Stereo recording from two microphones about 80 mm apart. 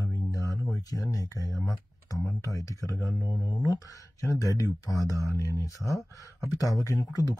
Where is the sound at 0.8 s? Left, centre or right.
Left.